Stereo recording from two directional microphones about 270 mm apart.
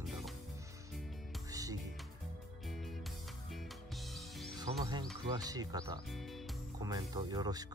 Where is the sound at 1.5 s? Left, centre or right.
Centre.